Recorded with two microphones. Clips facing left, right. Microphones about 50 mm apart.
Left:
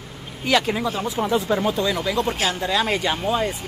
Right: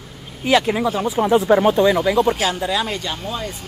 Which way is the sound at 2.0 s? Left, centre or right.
Centre.